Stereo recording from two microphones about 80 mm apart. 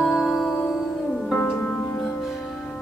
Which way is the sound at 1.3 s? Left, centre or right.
Left.